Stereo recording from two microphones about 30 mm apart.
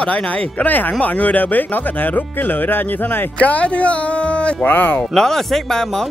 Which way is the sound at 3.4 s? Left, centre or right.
Left.